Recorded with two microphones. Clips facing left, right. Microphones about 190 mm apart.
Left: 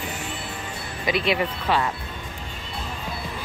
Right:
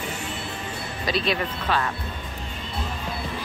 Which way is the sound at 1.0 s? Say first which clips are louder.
Left 2 dB; 20° left (ahead or behind).